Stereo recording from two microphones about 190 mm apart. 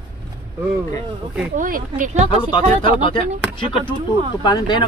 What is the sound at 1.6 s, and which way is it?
Speech, 45° right (ahead or behind).